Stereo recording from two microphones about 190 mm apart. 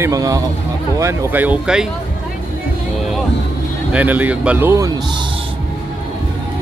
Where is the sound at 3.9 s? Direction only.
10° right (ahead or behind).